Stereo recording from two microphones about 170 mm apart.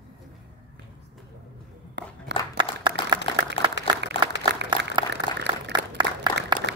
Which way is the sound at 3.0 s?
30° left (ahead or behind).